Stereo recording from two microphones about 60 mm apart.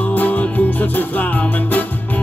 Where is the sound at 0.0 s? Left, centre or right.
Left.